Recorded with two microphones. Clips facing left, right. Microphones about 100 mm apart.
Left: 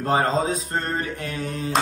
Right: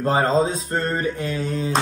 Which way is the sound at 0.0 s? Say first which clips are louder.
Right 2 dB; 30° right (ahead or behind).